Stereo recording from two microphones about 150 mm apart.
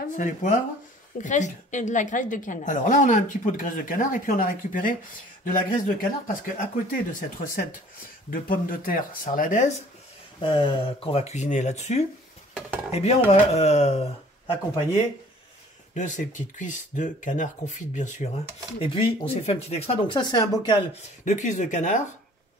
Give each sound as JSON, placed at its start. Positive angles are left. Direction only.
{"t": 0.1, "sound": "a woman's voice", "side_deg": 60}
{"t": 10.4, "sound": "speech", "side_deg": 35}
{"t": 15.9, "sound": "a woman's voice", "side_deg": 55}
{"t": 18.8, "sound": "speech", "side_deg": 35}
{"t": 21.2, "sound": "a woman's voice", "side_deg": 55}